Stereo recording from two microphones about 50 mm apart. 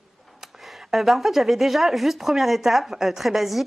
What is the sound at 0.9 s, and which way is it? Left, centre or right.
Speech, centre.